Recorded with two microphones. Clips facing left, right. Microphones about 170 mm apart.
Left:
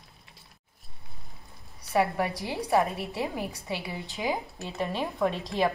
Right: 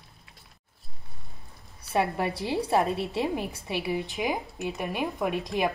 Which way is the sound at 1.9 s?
20° right (ahead or behind).